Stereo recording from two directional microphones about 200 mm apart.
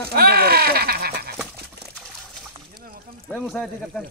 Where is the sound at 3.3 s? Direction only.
Centre (ahead or behind).